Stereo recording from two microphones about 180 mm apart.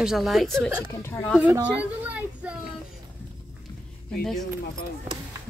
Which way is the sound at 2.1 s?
5° right (ahead or behind).